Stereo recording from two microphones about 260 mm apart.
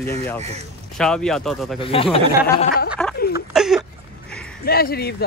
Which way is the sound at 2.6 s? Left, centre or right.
Left.